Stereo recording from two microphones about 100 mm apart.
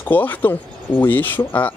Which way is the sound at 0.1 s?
15° left (ahead or behind).